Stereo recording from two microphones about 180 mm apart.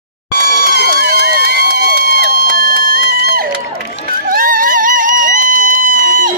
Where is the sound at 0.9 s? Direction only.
60° right (ahead or behind).